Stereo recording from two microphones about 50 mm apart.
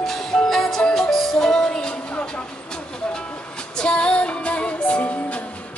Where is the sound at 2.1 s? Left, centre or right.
Left.